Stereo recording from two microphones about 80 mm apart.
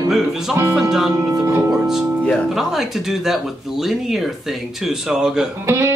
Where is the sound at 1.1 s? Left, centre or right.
Right.